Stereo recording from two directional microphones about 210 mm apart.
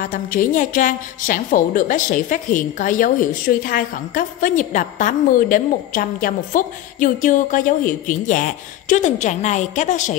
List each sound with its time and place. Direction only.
0.0 s a woman's voice: 40° left (ahead or behind)